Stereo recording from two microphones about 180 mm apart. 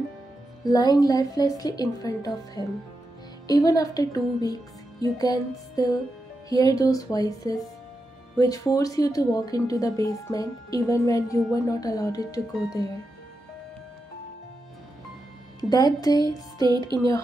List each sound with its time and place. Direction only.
0.7 s speech: 20° left (ahead or behind)
15.7 s speech: 20° left (ahead or behind)